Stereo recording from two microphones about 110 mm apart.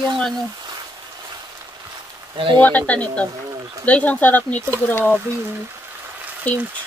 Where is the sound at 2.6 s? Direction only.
15° left (ahead or behind).